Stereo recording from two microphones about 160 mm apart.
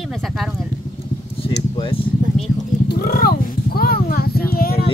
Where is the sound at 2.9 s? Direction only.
65° left (ahead or behind).